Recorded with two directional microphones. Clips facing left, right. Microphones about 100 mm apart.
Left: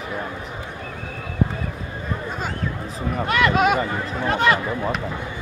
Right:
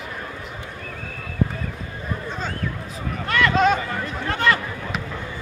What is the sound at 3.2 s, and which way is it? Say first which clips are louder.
Speech: even; 15° left (ahead or behind).